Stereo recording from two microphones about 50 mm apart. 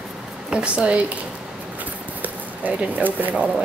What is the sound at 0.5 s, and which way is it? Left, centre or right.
Speech, right.